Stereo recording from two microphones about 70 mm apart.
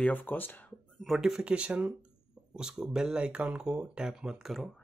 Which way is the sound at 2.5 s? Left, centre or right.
Centre.